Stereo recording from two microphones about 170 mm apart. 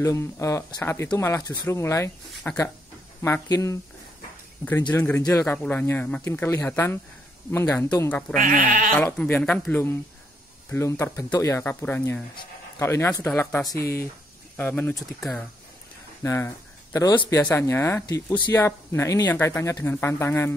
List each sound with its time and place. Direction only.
0.0 s speech: 20° left (ahead or behind)
8.4 s speech: 55° right (ahead or behind)
8.9 s speech: 10° left (ahead or behind)
17.1 s speech: 30° left (ahead or behind)
17.4 s speech: 10° left (ahead or behind)